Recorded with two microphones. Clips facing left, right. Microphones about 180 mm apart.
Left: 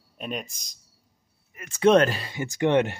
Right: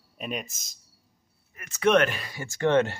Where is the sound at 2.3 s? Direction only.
15° left (ahead or behind).